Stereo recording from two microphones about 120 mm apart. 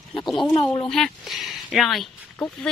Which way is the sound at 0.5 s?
40° left (ahead or behind).